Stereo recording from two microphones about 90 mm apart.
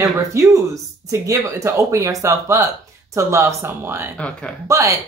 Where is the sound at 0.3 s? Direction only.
35° right (ahead or behind).